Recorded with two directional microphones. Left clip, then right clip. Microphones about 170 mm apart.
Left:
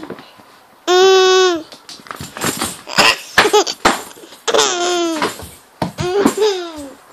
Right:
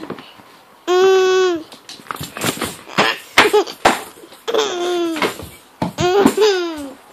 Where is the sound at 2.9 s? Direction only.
15° left (ahead or behind).